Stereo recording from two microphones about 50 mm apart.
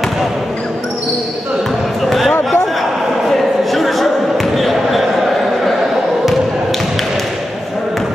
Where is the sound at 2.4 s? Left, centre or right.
Centre.